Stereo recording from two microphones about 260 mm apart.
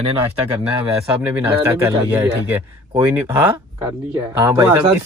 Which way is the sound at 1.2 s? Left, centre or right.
Centre.